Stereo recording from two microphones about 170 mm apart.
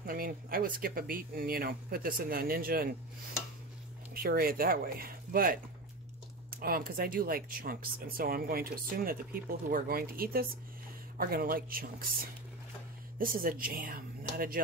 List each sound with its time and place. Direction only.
0.0 s speech: 60° right (ahead or behind)
4.1 s speech: 60° right (ahead or behind)